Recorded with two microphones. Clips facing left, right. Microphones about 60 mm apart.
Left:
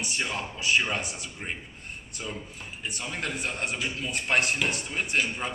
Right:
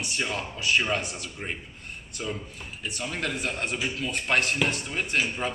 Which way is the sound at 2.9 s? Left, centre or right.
Left.